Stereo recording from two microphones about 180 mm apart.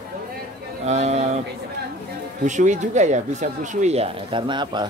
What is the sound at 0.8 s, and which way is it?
Speech, 40° right (ahead or behind).